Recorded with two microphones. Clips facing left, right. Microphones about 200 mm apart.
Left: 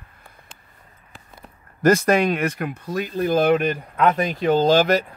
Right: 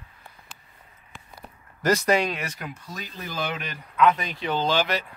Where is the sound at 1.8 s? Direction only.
50° left (ahead or behind).